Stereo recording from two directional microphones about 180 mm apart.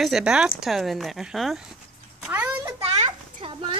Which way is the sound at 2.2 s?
10° right (ahead or behind).